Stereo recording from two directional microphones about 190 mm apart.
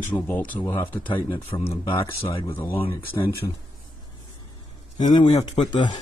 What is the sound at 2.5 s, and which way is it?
Speech, 10° left (ahead or behind).